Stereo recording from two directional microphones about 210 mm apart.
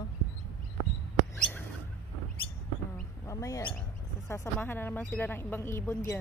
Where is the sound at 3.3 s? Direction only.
15° left (ahead or behind).